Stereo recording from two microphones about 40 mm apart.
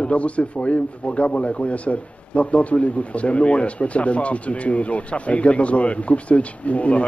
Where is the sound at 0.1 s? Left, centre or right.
Left.